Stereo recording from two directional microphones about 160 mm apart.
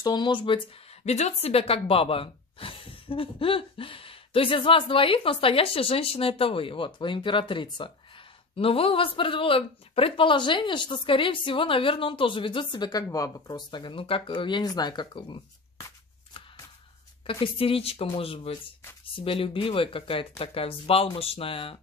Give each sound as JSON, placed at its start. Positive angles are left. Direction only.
{"t": 0.0, "sound": "speech", "side_deg": 25}
{"t": 1.0, "sound": "speech", "side_deg": 45}
{"t": 17.3, "sound": "speech", "side_deg": 35}